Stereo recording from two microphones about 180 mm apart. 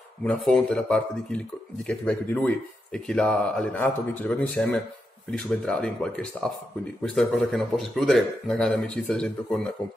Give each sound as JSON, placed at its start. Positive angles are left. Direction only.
{"t": 0.2, "sound": "speech", "side_deg": 5}